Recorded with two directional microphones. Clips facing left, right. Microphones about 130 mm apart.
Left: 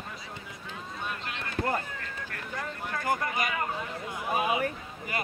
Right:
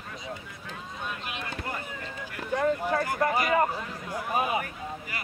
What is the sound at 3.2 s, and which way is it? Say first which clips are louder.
Speech: right 7 dB; 35° right (ahead or behind).